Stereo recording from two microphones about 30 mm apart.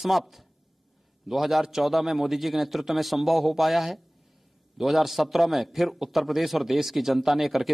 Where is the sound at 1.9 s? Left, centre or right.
Centre.